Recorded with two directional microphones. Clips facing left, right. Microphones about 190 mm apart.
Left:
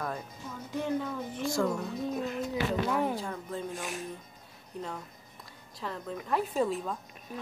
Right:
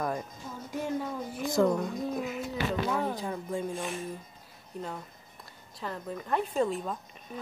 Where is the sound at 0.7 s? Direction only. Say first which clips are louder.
Left 1 dB; 10° right (ahead or behind).